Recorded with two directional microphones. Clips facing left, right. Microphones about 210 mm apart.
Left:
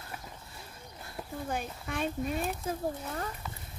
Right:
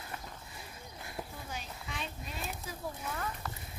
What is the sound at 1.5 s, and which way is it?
Speech, 55° left (ahead or behind).